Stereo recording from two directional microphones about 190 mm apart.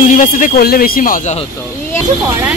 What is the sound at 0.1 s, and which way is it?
Speech, 45° left (ahead or behind).